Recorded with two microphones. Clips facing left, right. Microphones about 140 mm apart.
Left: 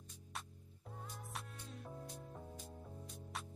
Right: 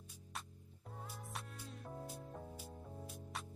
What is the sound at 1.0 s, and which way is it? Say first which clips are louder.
Music: even; centre (ahead or behind).